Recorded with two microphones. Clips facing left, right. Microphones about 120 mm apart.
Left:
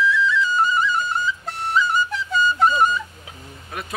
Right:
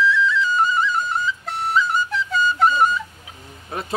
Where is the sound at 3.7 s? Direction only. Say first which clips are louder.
Right 5 dB; 30° right (ahead or behind).